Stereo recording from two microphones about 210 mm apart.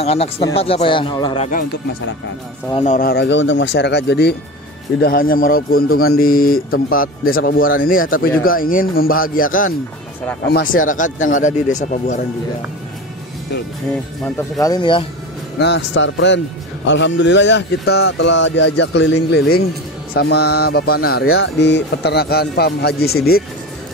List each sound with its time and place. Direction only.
0.0 s speech: 30° left (ahead or behind)
2.7 s speech: 35° left (ahead or behind)
14.2 s speech: 15° left (ahead or behind)
15.6 s speech: 60° left (ahead or behind)